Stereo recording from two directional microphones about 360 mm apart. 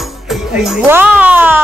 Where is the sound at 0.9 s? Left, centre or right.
Centre.